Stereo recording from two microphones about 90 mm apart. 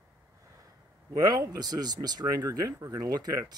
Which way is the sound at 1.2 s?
45° right (ahead or behind).